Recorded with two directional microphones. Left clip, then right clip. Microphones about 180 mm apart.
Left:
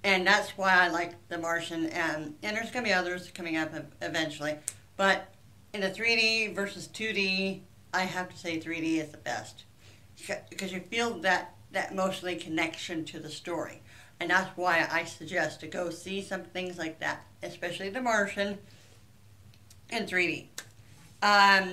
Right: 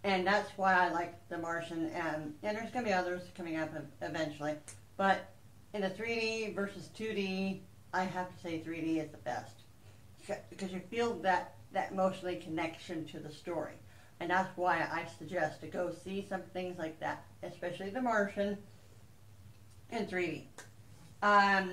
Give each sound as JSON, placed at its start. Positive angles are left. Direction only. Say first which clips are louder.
{"t": 0.0, "sound": "speech", "louder": "left 7 dB", "side_deg": 15}
{"t": 5.7, "sound": "speech", "louder": "left 8 dB", "side_deg": 15}
{"t": 16.1, "sound": "speech", "louder": "left 4 dB", "side_deg": 20}
{"t": 19.9, "sound": "speech", "louder": "left 8 dB", "side_deg": 20}